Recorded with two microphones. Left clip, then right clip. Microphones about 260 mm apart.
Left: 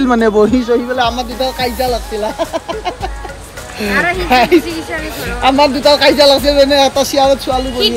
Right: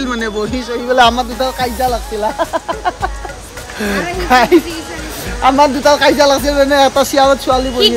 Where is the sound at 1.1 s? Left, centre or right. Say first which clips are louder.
Right 1 dB; centre.